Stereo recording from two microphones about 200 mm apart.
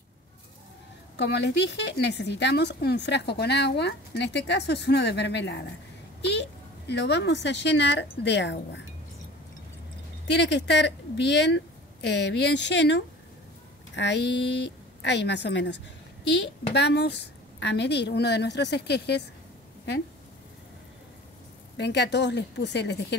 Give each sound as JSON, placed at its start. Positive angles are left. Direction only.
{"t": 1.1, "sound": "a woman's voice", "side_deg": 55}
{"t": 6.9, "sound": "a woman's voice", "side_deg": 60}
{"t": 10.3, "sound": "a woman's voice", "side_deg": 60}
{"t": 21.7, "sound": "a woman's voice", "side_deg": 60}